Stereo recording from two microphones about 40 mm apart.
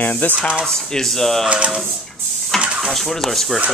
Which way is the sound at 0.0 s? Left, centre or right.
Left.